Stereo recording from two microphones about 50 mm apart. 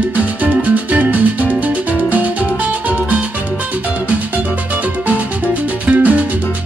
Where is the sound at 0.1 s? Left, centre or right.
Right.